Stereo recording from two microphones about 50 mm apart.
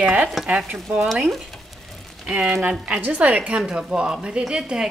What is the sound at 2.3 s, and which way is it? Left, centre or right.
A woman's voice, right.